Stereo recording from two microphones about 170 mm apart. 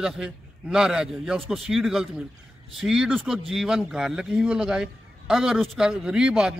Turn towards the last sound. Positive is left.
turn(degrees=-5)  # may be behind; listen again after turning